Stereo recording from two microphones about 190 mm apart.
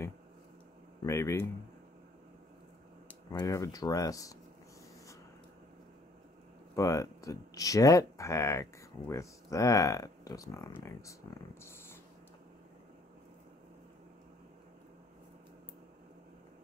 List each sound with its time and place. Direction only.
1.0 s speech: 15° left (ahead or behind)
3.3 s speech: 15° left (ahead or behind)
6.7 s speech: 15° left (ahead or behind)
11.6 s a sound: 10° left (ahead or behind)